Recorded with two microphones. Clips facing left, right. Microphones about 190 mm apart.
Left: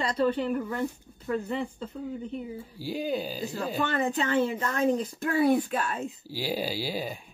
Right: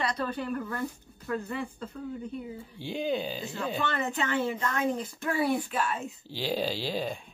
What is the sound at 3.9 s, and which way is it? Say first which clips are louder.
Speech: left 4 dB; 35° left (ahead or behind).